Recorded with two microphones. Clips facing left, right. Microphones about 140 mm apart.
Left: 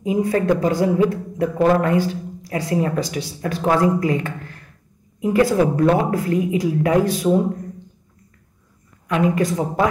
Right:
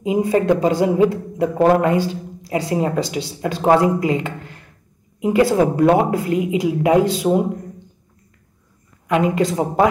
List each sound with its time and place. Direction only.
0.0 s speech: 20° right (ahead or behind)
9.0 s speech: 25° right (ahead or behind)